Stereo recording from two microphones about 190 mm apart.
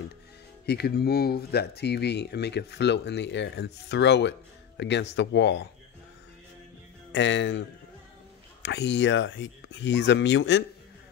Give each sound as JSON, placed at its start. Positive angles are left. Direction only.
{"t": 0.7, "sound": "speech", "side_deg": 60}
{"t": 7.1, "sound": "speech", "side_deg": 75}
{"t": 8.6, "sound": "speech", "side_deg": 65}